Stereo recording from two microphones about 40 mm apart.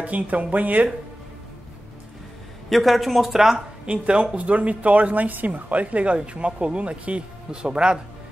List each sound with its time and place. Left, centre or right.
0.0 s speech: right
2.7 s speech: centre
4.1 s speech: right